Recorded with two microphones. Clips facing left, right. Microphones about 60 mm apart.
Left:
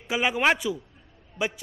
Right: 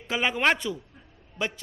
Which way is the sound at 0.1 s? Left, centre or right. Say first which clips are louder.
Left 1 dB; centre.